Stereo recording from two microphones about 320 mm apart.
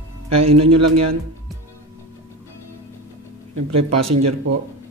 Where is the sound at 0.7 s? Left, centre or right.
Right.